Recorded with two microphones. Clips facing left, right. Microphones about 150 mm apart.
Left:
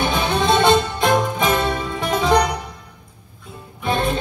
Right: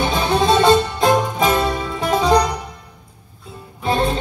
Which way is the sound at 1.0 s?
35° right (ahead or behind).